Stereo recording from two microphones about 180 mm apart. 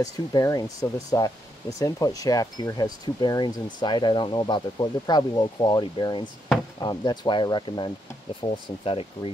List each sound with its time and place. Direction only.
0.0 s speech: 20° left (ahead or behind)